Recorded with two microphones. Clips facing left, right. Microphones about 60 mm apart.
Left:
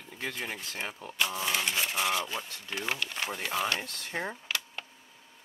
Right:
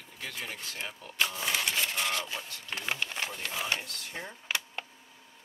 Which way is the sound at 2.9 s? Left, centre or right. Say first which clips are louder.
Right 1 dB; centre.